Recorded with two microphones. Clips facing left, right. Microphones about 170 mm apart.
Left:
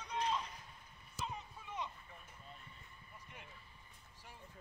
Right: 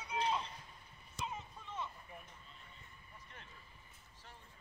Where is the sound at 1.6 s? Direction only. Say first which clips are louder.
Left 1 dB; 15° left (ahead or behind).